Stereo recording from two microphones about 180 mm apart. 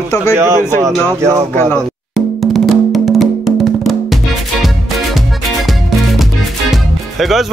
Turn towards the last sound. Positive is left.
turn(degrees=0)  # may be behind; listen again after turning